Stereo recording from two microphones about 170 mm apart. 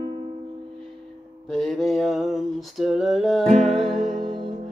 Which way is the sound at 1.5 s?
Centre (ahead or behind).